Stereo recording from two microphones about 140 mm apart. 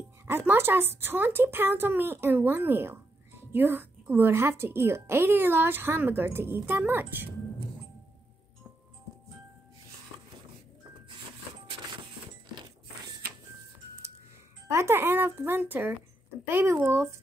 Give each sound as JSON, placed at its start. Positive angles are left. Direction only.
{"t": 0.3, "sound": "speech", "side_deg": -15}
{"t": 14.7, "sound": "speech", "side_deg": -20}